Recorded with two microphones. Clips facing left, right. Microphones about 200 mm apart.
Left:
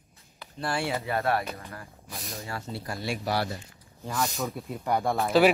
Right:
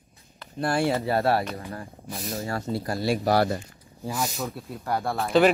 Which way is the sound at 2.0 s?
Centre (ahead or behind).